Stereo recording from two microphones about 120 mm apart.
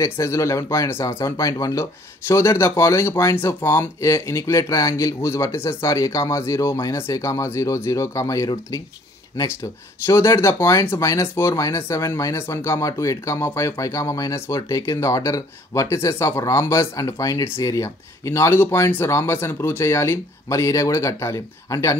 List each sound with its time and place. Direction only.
0.0 s speech: 25° left (ahead or behind)